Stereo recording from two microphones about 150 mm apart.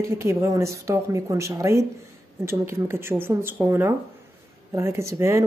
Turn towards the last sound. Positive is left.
turn(degrees=-20)  # may be behind; listen again after turning